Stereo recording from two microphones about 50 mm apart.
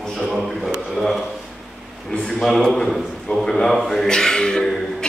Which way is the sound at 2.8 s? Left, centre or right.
Centre.